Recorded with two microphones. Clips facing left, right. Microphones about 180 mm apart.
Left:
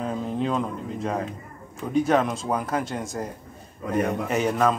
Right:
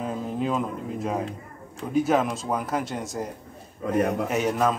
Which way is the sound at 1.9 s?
Centre (ahead or behind).